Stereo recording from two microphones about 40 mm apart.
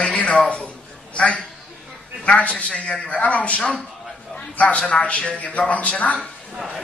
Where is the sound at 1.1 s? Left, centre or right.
Left.